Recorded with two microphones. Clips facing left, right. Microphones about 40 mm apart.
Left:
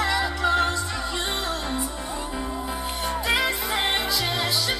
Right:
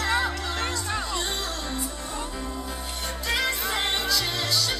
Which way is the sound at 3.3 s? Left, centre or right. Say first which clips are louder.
Left 1 dB; centre.